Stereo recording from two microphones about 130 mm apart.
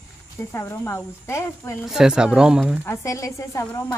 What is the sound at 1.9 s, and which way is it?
Speech, 5° right (ahead or behind).